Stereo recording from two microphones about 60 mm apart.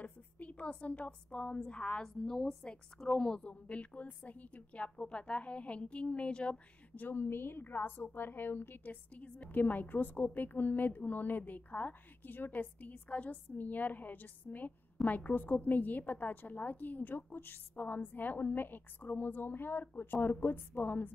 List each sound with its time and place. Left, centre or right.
0.0 s a sound: left
1.7 s a woman's voice: centre
7.0 s a woman's voice: left